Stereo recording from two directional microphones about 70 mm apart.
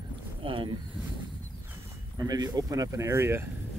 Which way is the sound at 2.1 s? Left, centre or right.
Right.